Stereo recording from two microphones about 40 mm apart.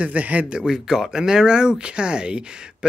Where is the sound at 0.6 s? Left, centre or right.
Centre.